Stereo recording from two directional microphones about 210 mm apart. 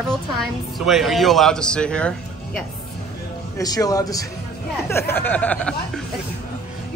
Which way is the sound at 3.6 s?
15° left (ahead or behind).